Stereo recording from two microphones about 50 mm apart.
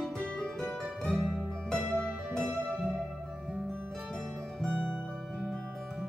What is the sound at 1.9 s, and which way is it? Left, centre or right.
Music, centre.